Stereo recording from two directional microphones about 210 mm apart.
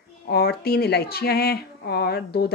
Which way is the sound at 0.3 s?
50° left (ahead or behind).